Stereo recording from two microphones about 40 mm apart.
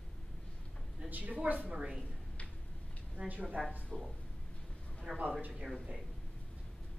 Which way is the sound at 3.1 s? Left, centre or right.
Right.